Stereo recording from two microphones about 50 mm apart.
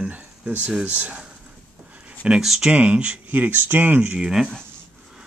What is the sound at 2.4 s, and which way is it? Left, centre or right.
Speech, centre.